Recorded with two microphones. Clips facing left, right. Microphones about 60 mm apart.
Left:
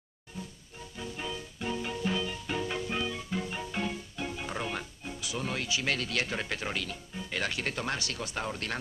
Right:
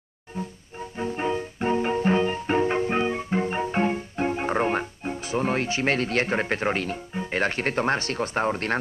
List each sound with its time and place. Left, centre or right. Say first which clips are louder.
0.3 s music: right 10 dB; right